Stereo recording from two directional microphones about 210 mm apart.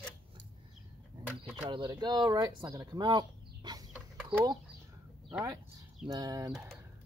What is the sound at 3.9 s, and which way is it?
Chicken, 5° right (ahead or behind).